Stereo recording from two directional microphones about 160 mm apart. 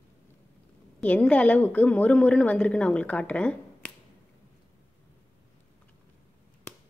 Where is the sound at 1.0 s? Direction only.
10° left (ahead or behind).